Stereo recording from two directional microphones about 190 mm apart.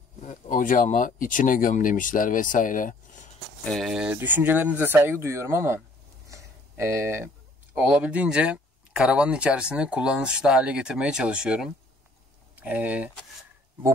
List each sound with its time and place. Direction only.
0.2 s speech: 45° left (ahead or behind)
3.6 s speech: centre (ahead or behind)
6.2 s a sound: 15° right (ahead or behind)
7.7 s speech: 5° right (ahead or behind)